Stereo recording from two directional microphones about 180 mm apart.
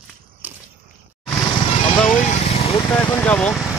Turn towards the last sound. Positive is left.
turn(degrees=10)  # may be behind; listen again after turning